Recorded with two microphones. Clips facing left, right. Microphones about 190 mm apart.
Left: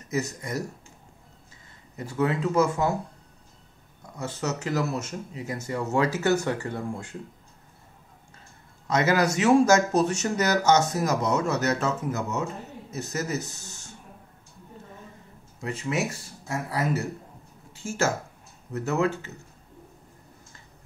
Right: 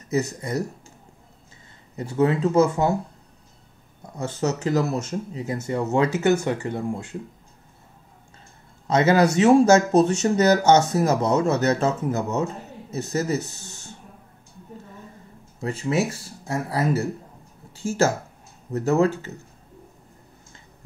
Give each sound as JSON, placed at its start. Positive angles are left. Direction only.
{"t": 0.1, "sound": "speech", "side_deg": -30}
{"t": 2.0, "sound": "speech", "side_deg": -25}
{"t": 4.2, "sound": "speech", "side_deg": -30}
{"t": 8.8, "sound": "speech", "side_deg": -25}
{"t": 15.6, "sound": "speech", "side_deg": -30}